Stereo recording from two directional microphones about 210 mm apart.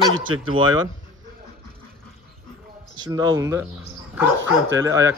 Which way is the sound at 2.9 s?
20° right (ahead or behind).